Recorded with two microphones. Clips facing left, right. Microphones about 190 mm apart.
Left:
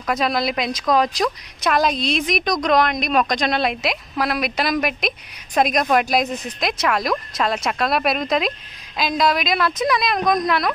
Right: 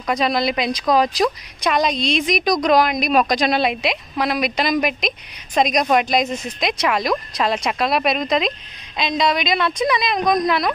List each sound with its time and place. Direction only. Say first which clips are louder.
0.0 s speech: right 2 dB; centre (ahead or behind)